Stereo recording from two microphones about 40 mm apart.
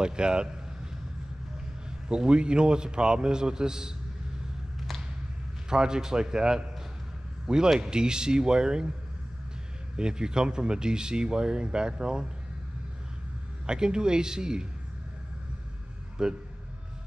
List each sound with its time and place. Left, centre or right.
0.0 s speech: right
1.9 s speech: right
4.7 s a sound: centre
5.7 s a man's voice: centre
9.9 s speech: centre
13.7 s speech: centre
16.2 s a man's voice: centre